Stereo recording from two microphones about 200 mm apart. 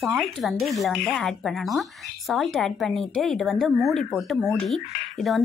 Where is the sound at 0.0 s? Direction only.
Centre (ahead or behind).